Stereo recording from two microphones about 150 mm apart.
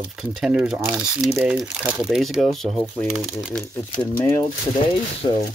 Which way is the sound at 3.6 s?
15° left (ahead or behind).